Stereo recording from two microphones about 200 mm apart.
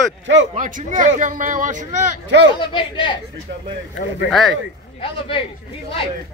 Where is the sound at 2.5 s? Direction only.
25° left (ahead or behind).